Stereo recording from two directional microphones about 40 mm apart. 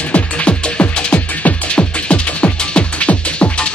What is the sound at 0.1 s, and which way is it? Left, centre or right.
Music, left.